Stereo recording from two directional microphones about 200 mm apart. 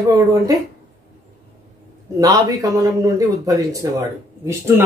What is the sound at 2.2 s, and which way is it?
Speech, 15° right (ahead or behind).